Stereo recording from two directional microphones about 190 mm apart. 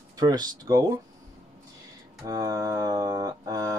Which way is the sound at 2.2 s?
20° right (ahead or behind).